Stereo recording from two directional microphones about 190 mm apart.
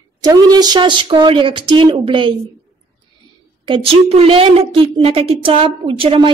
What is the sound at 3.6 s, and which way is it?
A woman's voice, 30° right (ahead or behind).